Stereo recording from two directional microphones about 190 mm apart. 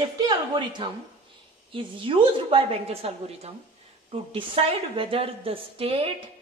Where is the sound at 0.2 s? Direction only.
25° right (ahead or behind).